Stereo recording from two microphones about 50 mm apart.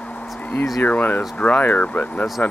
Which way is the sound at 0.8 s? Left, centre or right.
Left.